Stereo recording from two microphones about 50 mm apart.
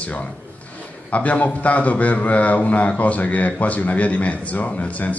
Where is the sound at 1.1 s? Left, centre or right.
Left.